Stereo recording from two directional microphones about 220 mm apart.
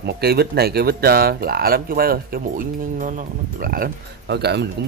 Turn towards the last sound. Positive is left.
turn(degrees=-50)  # may be behind; listen again after turning